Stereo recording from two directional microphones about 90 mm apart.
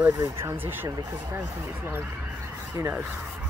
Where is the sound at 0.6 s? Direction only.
25° right (ahead or behind).